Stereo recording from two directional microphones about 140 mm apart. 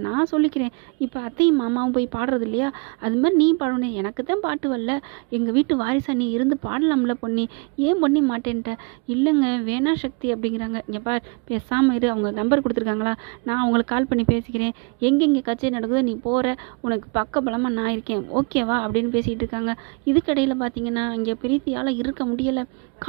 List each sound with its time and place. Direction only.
0.0 s a woman's voice: 35° right (ahead or behind)